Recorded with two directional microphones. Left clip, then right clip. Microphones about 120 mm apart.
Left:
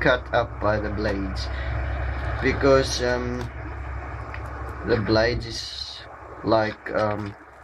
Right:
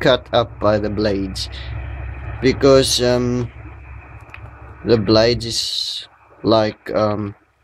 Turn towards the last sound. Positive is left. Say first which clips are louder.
# right 6 dB
turn(degrees=-35)  # may be behind; listen again after turning